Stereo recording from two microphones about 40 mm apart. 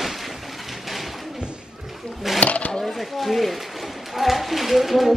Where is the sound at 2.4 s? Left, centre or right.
Left.